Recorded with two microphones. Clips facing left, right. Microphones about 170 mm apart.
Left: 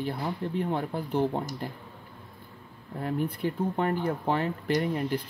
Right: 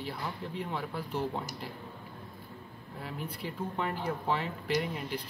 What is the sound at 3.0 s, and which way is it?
Speech, 50° left (ahead or behind).